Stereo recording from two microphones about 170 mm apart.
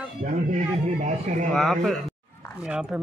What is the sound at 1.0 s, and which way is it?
Speech, 45° right (ahead or behind).